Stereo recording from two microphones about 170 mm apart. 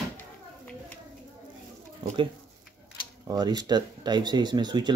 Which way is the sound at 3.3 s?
25° right (ahead or behind).